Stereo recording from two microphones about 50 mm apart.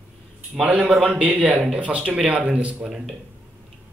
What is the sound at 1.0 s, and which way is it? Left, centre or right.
Speech, right.